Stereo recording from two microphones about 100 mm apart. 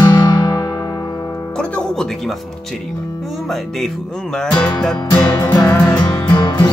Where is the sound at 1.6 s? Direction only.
10° left (ahead or behind).